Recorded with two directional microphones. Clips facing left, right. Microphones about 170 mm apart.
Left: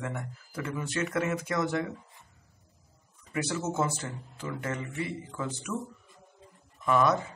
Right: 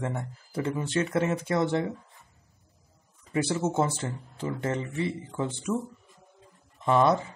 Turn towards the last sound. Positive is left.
turn(degrees=-30)  # may be behind; listen again after turning